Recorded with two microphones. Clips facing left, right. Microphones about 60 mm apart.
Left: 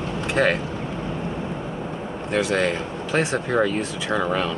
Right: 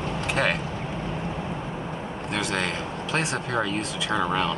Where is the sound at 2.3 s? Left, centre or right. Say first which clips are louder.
Left 6 dB; centre.